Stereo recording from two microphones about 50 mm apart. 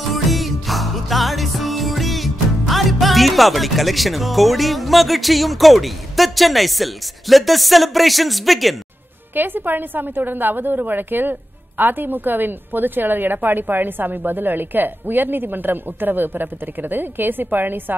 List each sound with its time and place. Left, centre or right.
0.1 s music: centre
9.3 s a woman's voice: right